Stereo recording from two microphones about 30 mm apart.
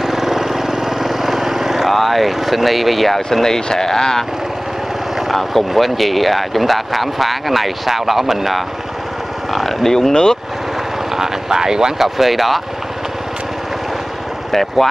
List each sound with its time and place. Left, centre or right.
0.0 s vehicle: centre
1.9 s speech: centre
3.4 s speech: centre
5.3 s speech: centre
9.5 s a sound: centre
11.1 s speech: centre
12.2 s speech: centre
14.5 s speech: centre